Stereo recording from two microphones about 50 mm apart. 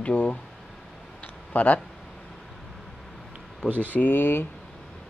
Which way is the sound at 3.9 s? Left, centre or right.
Left.